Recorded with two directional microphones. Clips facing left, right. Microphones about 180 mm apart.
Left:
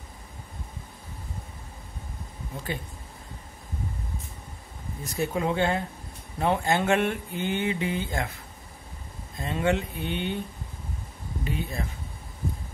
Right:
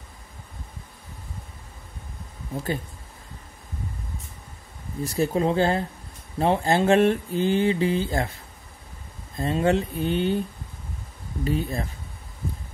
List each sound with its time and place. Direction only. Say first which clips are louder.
5.0 s mantra: right 5 dB; 35° right (ahead or behind)
9.4 s mantra: right 4 dB; 35° right (ahead or behind)
11.4 s mantra: right 6 dB; 40° right (ahead or behind)